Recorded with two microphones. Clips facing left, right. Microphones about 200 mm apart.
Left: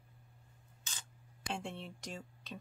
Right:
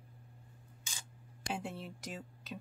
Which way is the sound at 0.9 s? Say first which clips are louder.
Even; 10° right (ahead or behind).